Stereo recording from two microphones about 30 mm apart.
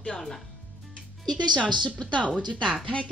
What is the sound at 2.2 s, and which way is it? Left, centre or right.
Speech, right.